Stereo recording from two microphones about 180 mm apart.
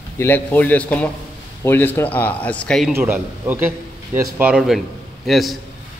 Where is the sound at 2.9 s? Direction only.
10° right (ahead or behind).